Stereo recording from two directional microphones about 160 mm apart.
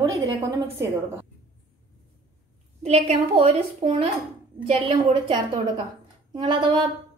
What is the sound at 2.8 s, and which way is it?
A woman's voice, 45° right (ahead or behind).